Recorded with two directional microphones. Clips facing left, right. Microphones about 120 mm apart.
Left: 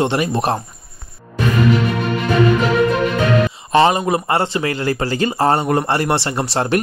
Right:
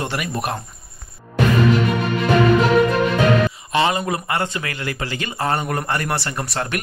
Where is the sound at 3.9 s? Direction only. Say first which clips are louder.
Left 5 dB; 25° left (ahead or behind).